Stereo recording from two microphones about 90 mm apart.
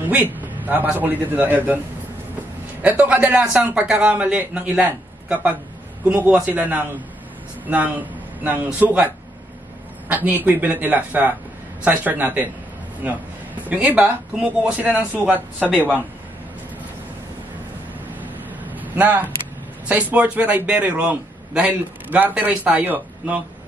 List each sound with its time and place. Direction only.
0.0 s a sound: 20° right (ahead or behind)
0.9 s a man's voice: 20° right (ahead or behind)
2.8 s a man's voice: 15° right (ahead or behind)
15.3 s speech: 20° left (ahead or behind)
18.2 s vehicle: 20° right (ahead or behind)
19.9 s speech: 15° right (ahead or behind)